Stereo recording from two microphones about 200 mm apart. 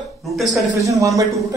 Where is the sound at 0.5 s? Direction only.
15° right (ahead or behind).